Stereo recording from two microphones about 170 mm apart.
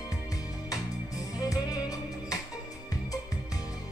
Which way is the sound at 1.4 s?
20° left (ahead or behind).